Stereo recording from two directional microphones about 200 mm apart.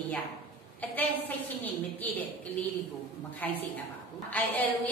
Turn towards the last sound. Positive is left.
turn(degrees=10)  # may be behind; listen again after turning